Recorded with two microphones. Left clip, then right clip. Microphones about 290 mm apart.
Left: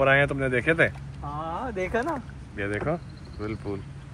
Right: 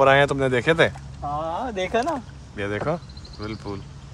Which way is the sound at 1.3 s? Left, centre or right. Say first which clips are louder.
Right 4 dB; right.